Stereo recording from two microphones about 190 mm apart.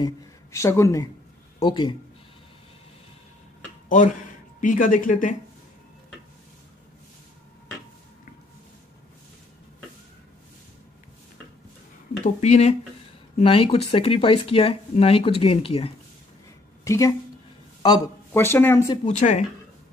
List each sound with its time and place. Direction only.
0.0 s speech: 15° left (ahead or behind)
3.9 s speech: 40° left (ahead or behind)
12.2 s speech: 35° left (ahead or behind)
16.8 s a woman's voice: 15° left (ahead or behind)
18.3 s speech: 10° left (ahead or behind)
19.0 s speech: 40° left (ahead or behind)